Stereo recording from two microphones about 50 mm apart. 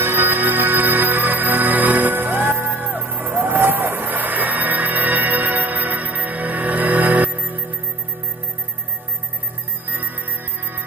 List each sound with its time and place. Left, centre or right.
0.0 s music: right